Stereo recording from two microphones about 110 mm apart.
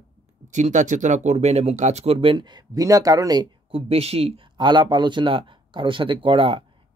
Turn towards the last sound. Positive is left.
turn(degrees=-50)  # may be behind; listen again after turning